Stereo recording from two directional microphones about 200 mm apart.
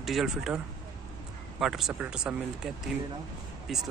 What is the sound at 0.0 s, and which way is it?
Speech, centre (ahead or behind).